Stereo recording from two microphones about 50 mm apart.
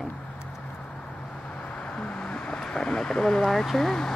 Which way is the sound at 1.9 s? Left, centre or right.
Left.